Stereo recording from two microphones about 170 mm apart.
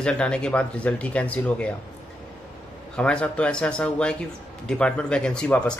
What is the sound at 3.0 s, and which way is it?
Speech, 5° left (ahead or behind).